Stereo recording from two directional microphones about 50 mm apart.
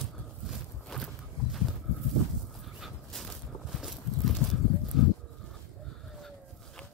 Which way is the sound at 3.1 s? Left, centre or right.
Centre.